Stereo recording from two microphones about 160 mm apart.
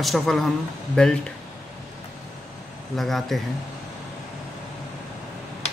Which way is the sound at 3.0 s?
Centre (ahead or behind).